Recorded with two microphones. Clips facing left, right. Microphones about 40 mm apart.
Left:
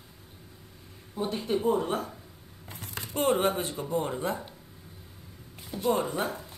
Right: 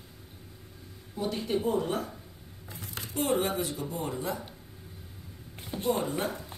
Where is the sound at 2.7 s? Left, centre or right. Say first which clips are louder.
Even; left.